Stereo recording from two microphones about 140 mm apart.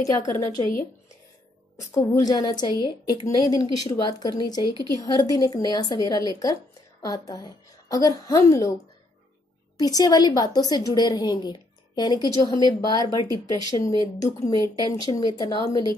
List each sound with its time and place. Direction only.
0.0 s a woman's voice: 25° left (ahead or behind)
2.0 s a woman's voice: 25° left (ahead or behind)
9.8 s a woman's voice: 25° left (ahead or behind)